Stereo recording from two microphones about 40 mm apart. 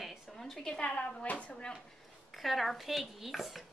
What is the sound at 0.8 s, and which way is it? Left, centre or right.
Speech, left.